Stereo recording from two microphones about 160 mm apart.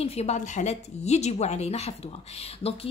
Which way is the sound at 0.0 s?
40° left (ahead or behind).